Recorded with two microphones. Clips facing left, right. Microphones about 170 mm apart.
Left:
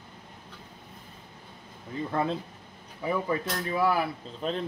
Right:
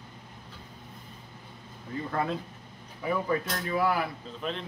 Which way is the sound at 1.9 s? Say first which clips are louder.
Left 1 dB; 20° left (ahead or behind).